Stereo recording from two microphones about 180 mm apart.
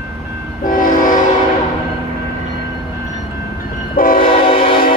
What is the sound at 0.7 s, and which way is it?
Train, 50° left (ahead or behind).